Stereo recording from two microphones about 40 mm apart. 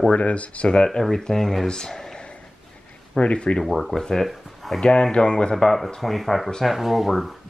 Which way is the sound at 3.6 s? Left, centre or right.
Centre.